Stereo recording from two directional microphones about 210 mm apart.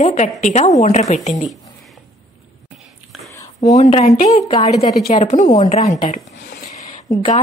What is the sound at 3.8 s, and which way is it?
A woman's voice, 30° left (ahead or behind).